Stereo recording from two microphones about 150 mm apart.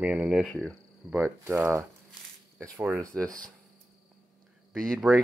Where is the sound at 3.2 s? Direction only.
25° right (ahead or behind).